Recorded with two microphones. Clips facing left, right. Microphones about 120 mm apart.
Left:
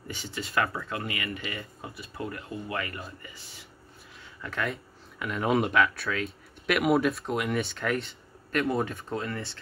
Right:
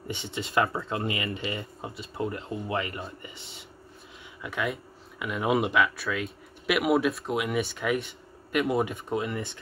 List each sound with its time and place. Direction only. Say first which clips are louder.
0.1 s speech: right 3 dB; 25° right (ahead or behind)
4.4 s speech: right 1 dB; 10° right (ahead or behind)